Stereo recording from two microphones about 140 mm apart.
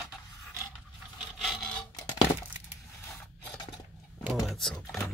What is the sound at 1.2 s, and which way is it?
Rub, centre (ahead or behind).